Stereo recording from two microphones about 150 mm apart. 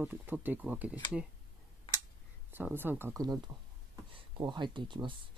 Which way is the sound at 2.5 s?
15° right (ahead or behind).